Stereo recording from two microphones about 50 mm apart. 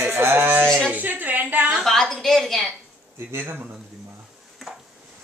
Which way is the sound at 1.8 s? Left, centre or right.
Centre.